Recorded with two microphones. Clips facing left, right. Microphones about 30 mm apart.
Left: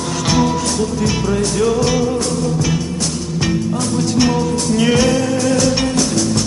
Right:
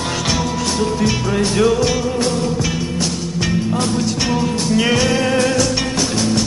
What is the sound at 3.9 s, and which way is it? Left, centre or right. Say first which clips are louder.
Music: left 3 dB; centre.